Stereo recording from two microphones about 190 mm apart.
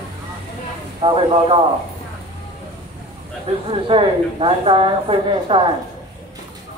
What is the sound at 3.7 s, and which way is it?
A woman's voice, 30° right (ahead or behind).